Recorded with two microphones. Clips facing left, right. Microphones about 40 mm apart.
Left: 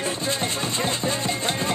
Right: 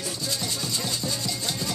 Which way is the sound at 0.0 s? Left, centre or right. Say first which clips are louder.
Left 6 dB; left.